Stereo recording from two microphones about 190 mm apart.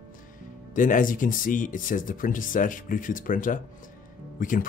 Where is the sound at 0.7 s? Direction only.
45° left (ahead or behind).